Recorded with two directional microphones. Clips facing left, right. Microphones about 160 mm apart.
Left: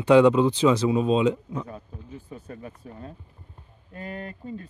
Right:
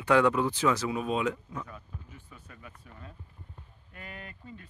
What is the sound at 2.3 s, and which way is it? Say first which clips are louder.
Speech: left 14 dB; 35° left (ahead or behind).